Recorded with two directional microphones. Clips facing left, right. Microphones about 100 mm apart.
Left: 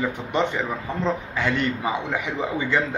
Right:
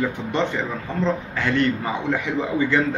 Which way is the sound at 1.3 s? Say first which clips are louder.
Right 3 dB; 15° left (ahead or behind).